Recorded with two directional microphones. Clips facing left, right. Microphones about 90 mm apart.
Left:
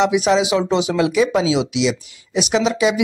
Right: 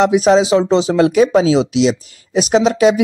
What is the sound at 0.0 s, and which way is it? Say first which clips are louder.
Speech: right 5 dB; 40° right (ahead or behind).